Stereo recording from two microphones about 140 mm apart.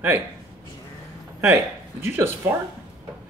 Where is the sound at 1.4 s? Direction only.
15° right (ahead or behind).